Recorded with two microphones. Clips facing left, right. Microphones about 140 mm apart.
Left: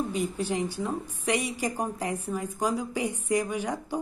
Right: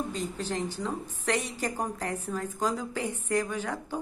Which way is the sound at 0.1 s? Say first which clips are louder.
Left 4 dB; 10° left (ahead or behind).